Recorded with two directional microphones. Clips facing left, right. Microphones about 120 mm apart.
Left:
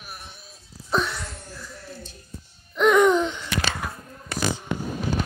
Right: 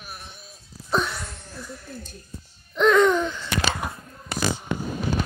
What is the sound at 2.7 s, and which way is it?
Music, 15° left (ahead or behind).